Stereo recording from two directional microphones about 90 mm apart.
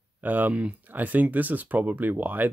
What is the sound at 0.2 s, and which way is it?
Speech, 20° right (ahead or behind).